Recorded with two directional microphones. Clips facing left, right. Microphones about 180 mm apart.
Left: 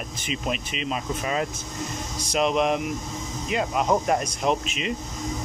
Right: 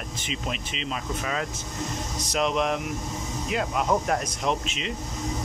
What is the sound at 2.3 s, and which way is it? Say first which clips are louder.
Speech: left 3 dB; 5° left (ahead or behind).